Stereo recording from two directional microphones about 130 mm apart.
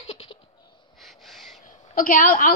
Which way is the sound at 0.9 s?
Centre (ahead or behind).